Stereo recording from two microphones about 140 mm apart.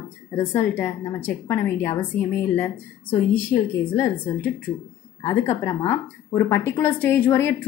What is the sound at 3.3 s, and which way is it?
A woman's voice, 15° left (ahead or behind).